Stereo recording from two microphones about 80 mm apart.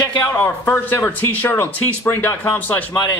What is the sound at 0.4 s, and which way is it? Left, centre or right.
Speech, left.